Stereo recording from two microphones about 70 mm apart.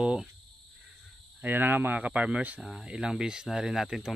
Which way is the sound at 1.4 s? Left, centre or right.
Right.